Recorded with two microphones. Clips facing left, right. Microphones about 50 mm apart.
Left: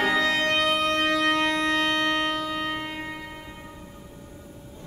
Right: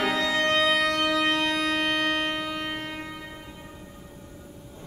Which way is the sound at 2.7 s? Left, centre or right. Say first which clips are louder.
Left 2 dB; left.